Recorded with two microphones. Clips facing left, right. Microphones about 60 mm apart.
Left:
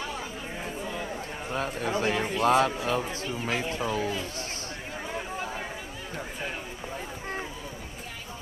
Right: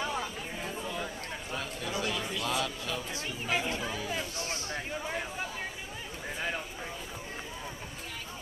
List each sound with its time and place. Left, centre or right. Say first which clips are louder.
1.5 s a man's voice: left 8 dB; left